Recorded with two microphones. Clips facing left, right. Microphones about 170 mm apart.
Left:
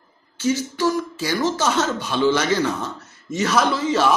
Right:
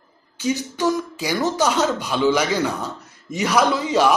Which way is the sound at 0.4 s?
15° right (ahead or behind).